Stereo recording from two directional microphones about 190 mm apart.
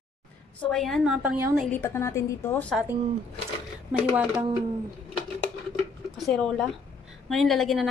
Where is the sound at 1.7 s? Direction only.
15° left (ahead or behind).